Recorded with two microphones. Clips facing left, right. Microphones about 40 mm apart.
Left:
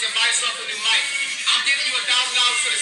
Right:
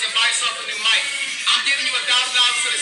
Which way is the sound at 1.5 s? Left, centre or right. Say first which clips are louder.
Right 1 dB; centre.